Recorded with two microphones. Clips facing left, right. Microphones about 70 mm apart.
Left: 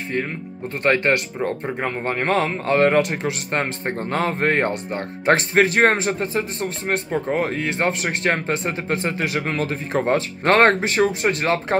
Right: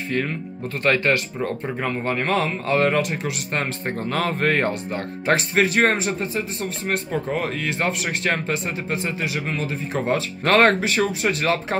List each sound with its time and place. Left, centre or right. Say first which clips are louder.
0.1 s speech: right 1 dB; centre
0.8 s speech: left 1 dB; left
6.9 s speech: left 2 dB; left